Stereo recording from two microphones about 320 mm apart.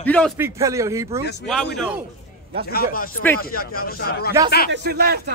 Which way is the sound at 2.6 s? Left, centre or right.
Left.